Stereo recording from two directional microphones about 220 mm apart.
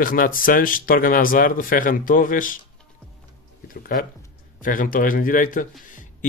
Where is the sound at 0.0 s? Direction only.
40° left (ahead or behind).